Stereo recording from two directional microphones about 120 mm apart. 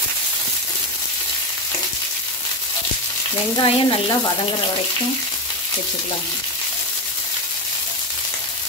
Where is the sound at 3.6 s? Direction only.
45° left (ahead or behind).